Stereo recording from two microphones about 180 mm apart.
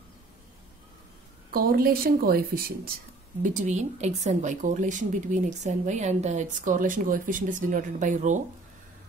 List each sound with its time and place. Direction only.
1.5 s a woman's voice: 55° right (ahead or behind)
3.4 s a woman's voice: 45° right (ahead or behind)